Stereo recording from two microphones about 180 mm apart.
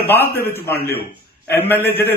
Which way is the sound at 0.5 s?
10° left (ahead or behind).